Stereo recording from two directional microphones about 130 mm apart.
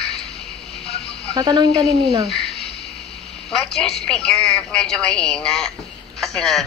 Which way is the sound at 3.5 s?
5° left (ahead or behind).